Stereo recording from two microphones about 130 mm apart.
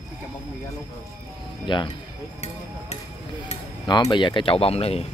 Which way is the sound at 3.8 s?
35° left (ahead or behind).